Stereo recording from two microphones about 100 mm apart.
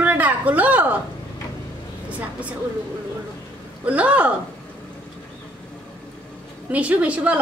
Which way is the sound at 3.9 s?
15° right (ahead or behind).